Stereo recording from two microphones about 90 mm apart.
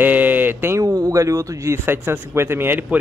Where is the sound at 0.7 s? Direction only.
40° right (ahead or behind).